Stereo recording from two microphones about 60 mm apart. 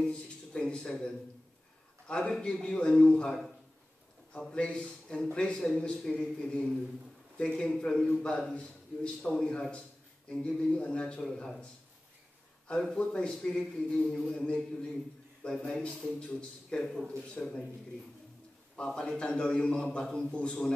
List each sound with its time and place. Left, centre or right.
0.0 s a man's voice: centre
13.0 s a man's voice: centre
18.8 s a man's voice: centre